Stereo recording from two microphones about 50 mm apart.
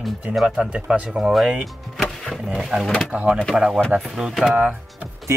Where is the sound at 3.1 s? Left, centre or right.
Right.